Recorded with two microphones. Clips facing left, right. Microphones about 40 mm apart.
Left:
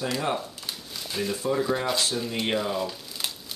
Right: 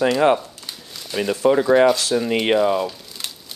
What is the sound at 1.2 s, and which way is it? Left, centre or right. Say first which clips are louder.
Speech: right 9 dB; right.